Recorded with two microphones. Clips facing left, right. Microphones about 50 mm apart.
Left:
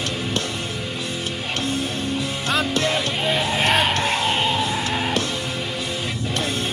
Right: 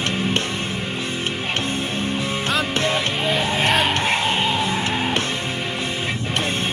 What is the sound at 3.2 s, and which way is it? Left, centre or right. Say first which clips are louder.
Speech: even; centre.